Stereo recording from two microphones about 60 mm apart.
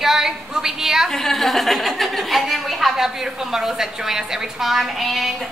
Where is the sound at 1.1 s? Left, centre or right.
Centre.